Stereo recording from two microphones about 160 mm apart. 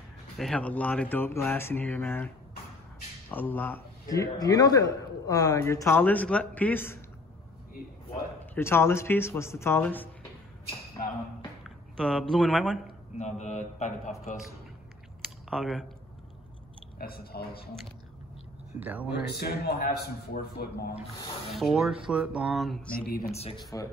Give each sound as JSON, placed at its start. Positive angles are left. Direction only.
{"t": 0.4, "sound": "a man's voice", "side_deg": 5}
{"t": 4.1, "sound": "a man's voice", "side_deg": 20}
{"t": 8.5, "sound": "a man's voice", "side_deg": 15}
{"t": 12.0, "sound": "speech", "side_deg": 5}
{"t": 13.2, "sound": "a man's voice", "side_deg": 45}
{"t": 15.5, "sound": "speech", "side_deg": 0}
{"t": 17.0, "sound": "a man's voice", "side_deg": 75}
{"t": 18.8, "sound": "speech", "side_deg": -10}
{"t": 19.4, "sound": "a man's voice", "side_deg": 75}
{"t": 21.5, "sound": "speech", "side_deg": 0}
{"t": 23.3, "sound": "speech", "side_deg": 40}